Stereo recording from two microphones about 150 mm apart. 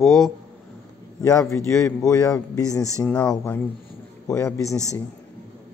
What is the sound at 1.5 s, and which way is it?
Speech, 20° left (ahead or behind).